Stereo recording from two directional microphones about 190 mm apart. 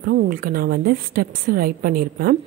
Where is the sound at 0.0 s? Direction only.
50° right (ahead or behind).